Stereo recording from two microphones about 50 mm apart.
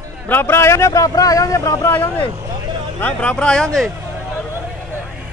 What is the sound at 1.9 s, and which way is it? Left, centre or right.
Speech, left.